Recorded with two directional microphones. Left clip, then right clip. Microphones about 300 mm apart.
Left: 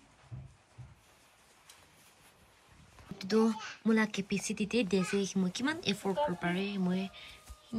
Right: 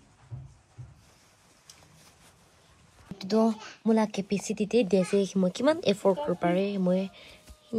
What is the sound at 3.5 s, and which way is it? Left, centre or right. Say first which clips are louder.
Speech: right 5 dB; centre.